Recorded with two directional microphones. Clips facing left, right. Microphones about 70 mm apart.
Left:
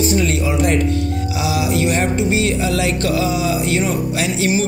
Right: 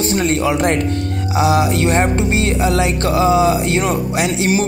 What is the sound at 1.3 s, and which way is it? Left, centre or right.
Music, right.